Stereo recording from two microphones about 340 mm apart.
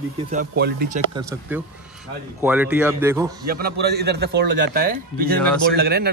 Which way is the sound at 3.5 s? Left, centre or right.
Right.